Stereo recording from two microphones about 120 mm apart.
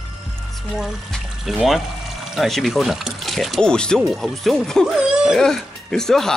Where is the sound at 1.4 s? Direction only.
Centre (ahead or behind).